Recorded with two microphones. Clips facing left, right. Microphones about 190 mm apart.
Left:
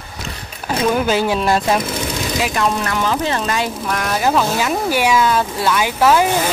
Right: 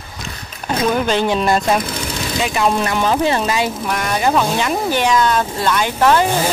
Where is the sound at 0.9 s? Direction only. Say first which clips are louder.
Even; 5° left (ahead or behind).